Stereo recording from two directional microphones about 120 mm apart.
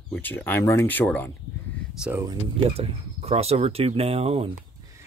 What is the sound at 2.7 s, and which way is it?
Speech, 55° right (ahead or behind).